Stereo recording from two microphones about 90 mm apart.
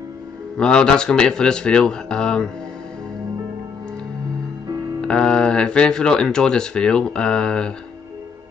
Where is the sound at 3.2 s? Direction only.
40° right (ahead or behind).